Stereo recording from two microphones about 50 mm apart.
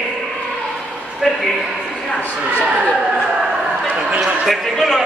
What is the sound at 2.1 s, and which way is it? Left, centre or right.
Speech, left.